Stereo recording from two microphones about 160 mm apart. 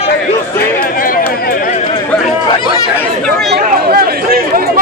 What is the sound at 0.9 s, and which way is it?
Chatter, 60° left (ahead or behind).